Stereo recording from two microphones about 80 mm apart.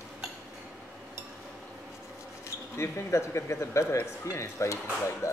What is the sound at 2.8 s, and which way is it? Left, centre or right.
Speech, left.